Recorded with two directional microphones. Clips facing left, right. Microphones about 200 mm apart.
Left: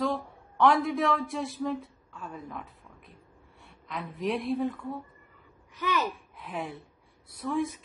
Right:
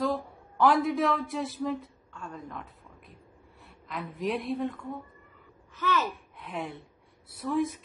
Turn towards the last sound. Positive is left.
turn(degrees=0)  # may be behind; listen again after turning